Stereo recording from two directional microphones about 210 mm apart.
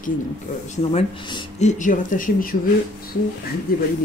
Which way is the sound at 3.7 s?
45° left (ahead or behind).